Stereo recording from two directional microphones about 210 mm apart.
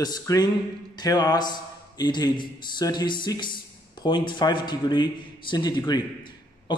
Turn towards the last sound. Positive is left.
turn(degrees=20)  # may be behind; listen again after turning